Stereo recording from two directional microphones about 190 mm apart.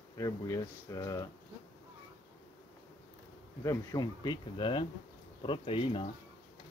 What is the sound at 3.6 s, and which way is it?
Speech, 20° left (ahead or behind).